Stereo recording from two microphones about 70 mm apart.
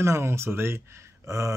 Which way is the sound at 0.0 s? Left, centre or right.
Right.